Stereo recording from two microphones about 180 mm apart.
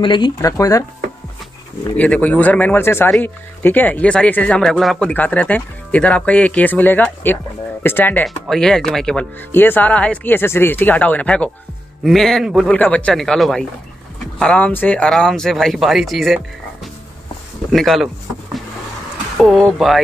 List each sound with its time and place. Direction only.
0.0 s speech: 25° left (ahead or behind)
2.0 s speech: 5° left (ahead or behind)
17.7 s speech: centre (ahead or behind)
19.3 s a sound: centre (ahead or behind)
19.8 s speech: centre (ahead or behind)